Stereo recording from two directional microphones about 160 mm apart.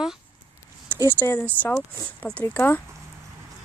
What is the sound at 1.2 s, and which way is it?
Speech, 10° left (ahead or behind).